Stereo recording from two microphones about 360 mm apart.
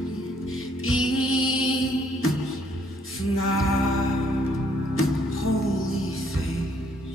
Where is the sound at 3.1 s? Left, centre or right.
Left.